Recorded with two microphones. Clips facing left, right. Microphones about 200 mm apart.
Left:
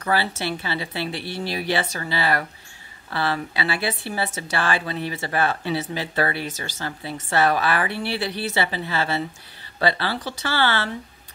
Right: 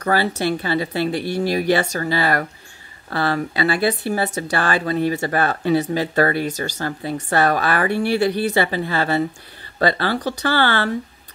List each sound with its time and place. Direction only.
0.0 s speech: 45° right (ahead or behind)